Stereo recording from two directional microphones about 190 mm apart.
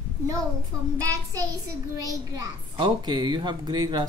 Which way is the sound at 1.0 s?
20° right (ahead or behind).